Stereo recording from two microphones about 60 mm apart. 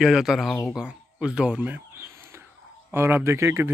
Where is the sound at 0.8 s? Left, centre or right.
Centre.